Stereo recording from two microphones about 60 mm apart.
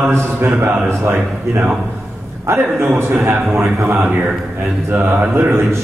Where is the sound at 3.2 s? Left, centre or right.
Right.